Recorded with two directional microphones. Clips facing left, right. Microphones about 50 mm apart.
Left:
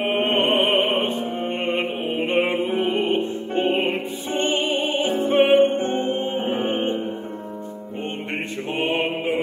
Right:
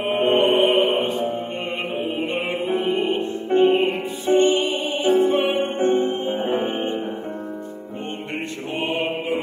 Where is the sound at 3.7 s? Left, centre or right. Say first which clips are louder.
Right 3 dB; left.